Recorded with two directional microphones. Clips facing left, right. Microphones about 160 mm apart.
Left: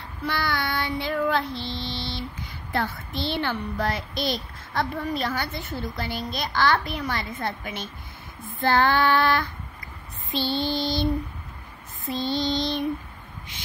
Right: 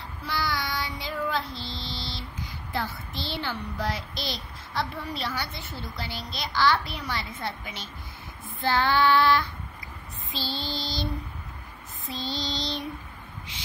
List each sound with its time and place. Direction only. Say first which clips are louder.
0.2 s child singing: left 3 dB; 60° left (ahead or behind)
2.7 s a child's voice: left 5 dB; 55° left (ahead or behind)
8.5 s child singing: left 3 dB; 50° left (ahead or behind)
10.4 s female singing: left 8 dB; 55° left (ahead or behind)
12.1 s a child's voice: left 7 dB; 55° left (ahead or behind)